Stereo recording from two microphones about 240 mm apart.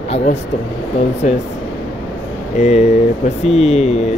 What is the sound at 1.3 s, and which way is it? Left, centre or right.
Speech, left.